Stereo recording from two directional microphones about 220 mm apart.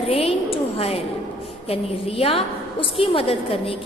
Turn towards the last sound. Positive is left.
turn(degrees=25)  # may be behind; listen again after turning